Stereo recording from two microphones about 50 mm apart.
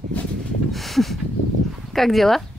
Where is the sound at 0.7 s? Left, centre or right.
Centre.